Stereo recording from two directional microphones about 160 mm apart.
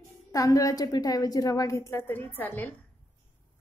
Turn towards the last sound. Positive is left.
turn(degrees=10)  # may be behind; listen again after turning